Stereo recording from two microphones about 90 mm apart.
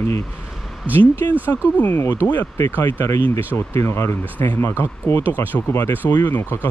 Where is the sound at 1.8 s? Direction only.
25° left (ahead or behind).